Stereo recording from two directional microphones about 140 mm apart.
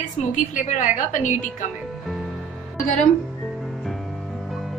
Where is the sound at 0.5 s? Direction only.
65° left (ahead or behind).